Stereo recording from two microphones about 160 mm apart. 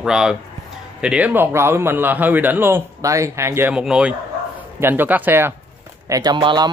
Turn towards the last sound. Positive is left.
turn(degrees=-30)  # may be behind; listen again after turning